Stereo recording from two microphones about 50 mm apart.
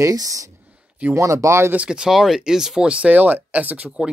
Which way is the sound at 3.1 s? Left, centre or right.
Right.